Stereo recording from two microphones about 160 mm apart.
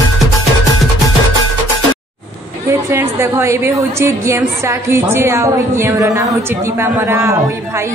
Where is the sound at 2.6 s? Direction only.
15° right (ahead or behind).